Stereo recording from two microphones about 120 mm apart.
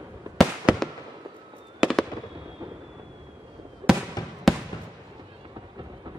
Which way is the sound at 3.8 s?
40° right (ahead or behind).